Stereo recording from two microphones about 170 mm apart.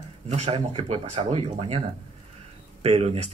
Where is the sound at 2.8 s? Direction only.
40° right (ahead or behind).